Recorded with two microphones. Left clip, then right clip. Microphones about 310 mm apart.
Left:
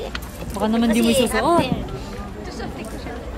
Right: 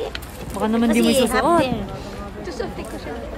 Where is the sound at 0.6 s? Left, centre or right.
Centre.